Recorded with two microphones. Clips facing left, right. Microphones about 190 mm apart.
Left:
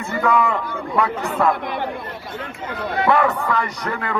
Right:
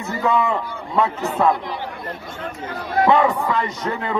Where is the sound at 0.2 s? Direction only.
20° right (ahead or behind).